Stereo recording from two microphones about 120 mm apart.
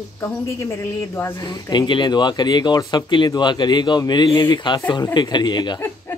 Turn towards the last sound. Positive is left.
turn(degrees=35)  # may be behind; listen again after turning